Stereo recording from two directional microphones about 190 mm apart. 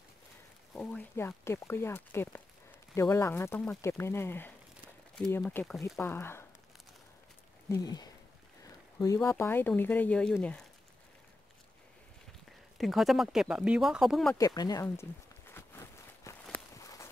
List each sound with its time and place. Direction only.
0.7 s speech: 10° left (ahead or behind)
7.7 s speech: 20° left (ahead or behind); by 10.7 s 5° left (ahead or behind)
12.7 s speech: centre (ahead or behind)
14.4 s walk: 20° left (ahead or behind)